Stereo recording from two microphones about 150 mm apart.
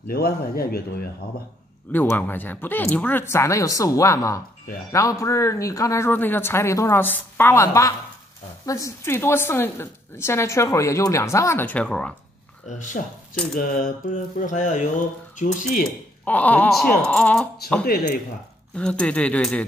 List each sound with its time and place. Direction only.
0.1 s speech: 90° left
1.9 s a woman's voice: 10° left (ahead or behind)
12.6 s speech: 55° left (ahead or behind)
16.3 s a woman's voice: 10° left (ahead or behind)
17.8 s speech: 90° left
18.8 s a woman's voice: 5° left (ahead or behind)